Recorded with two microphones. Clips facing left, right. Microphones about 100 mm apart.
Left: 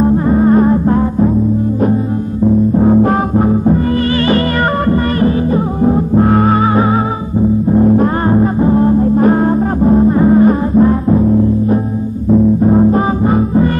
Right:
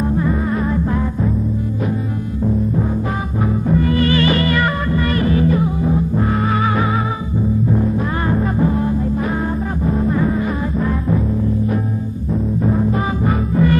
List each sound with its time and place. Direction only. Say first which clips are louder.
0.0 s music: left 8 dB; 35° left (ahead or behind)
2.8 s music: left 11 dB; 55° left (ahead or behind)
3.6 s music: left 4 dB; 35° left (ahead or behind)
5.8 s music: left 7 dB; 45° left (ahead or behind)
6.4 s music: left 7 dB; 35° left (ahead or behind)
7.8 s music: left 10 dB; 50° left (ahead or behind)
8.3 s music: left 4 dB; 30° left (ahead or behind)
12.6 s music: left 8 dB; 35° left (ahead or behind)